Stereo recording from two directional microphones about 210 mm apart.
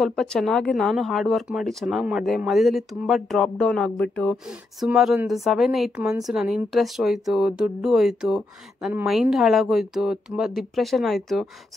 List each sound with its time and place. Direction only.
0.0 s speech: centre (ahead or behind)